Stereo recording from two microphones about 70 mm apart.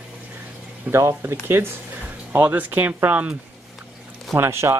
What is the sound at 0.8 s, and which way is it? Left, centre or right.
Speech, right.